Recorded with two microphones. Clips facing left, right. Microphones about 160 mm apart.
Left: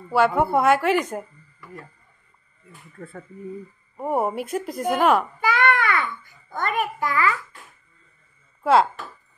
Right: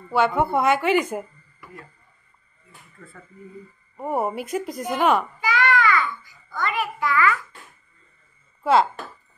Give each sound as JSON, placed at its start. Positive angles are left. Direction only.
{"t": 0.1, "sound": "speech", "side_deg": 5}
{"t": 3.0, "sound": "speech", "side_deg": 55}
{"t": 3.9, "sound": "speech", "side_deg": 0}
{"t": 5.4, "sound": "babbling", "side_deg": 55}